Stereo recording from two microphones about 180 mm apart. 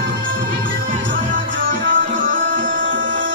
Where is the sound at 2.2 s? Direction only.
50° right (ahead or behind).